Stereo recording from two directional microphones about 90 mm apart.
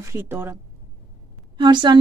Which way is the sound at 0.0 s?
25° right (ahead or behind).